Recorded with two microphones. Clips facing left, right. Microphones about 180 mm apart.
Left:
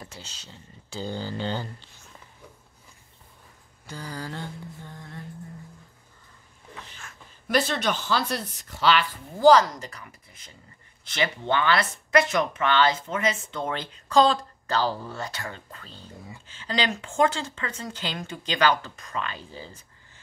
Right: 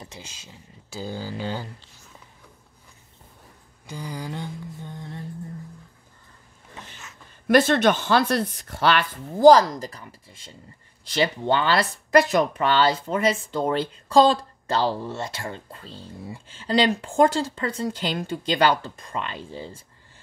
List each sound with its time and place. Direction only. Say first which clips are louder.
0.0 s speech: right 1 dB; 15° right (ahead or behind)
3.8 s mantra: right 2 dB; 15° right (ahead or behind)
7.4 s speech: right 7 dB; 55° right (ahead or behind)
9.4 s speech: right 3 dB; 35° right (ahead or behind)